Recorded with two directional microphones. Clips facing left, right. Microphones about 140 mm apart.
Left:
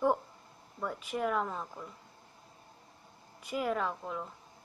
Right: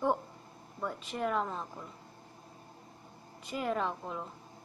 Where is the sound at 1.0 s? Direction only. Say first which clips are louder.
Left 2 dB; 10° left (ahead or behind).